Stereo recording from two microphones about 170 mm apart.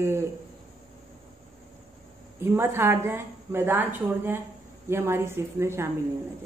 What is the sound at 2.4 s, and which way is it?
Speech, 15° right (ahead or behind).